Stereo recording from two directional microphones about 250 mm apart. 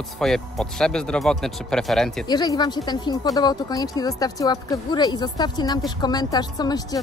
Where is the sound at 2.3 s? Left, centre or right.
Centre.